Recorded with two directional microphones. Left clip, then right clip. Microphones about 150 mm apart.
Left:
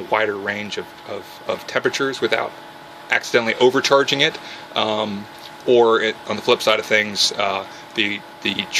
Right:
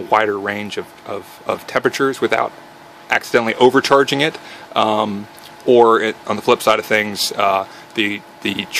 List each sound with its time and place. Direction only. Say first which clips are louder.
0.1 s speech: right 4 dB; 35° right (ahead or behind)